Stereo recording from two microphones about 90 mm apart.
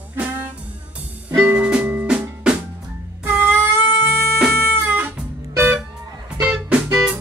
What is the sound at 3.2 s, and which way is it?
Music, 25° right (ahead or behind).